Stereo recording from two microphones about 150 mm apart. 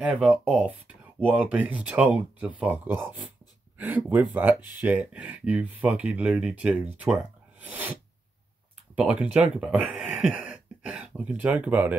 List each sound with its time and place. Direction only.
0.0 s speech: 10° right (ahead or behind)
4.6 s speech: 25° left (ahead or behind)
4.8 s speech: 10° right (ahead or behind)
8.9 s speech: 10° right (ahead or behind)